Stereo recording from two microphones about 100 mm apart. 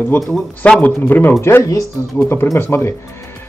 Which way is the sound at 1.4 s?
30° left (ahead or behind).